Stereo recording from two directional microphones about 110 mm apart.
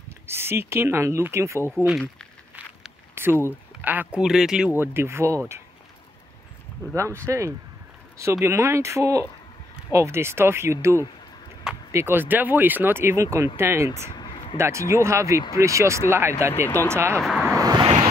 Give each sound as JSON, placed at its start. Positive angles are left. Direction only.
{"t": 0.3, "sound": "speech", "side_deg": -20}
{"t": 3.2, "sound": "a sound", "side_deg": -20}
{"t": 3.8, "sound": "speech", "side_deg": -15}
{"t": 4.6, "sound": "speech", "side_deg": -20}
{"t": 7.0, "sound": "speech", "side_deg": -25}
{"t": 14.1, "sound": "a sound", "side_deg": 45}
{"t": 14.6, "sound": "speech", "side_deg": -25}
{"t": 17.2, "sound": "speech", "side_deg": 5}
{"t": 17.6, "sound": "vehicle", "side_deg": -35}